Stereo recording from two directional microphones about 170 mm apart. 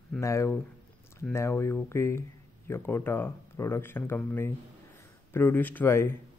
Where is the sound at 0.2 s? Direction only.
15° left (ahead or behind).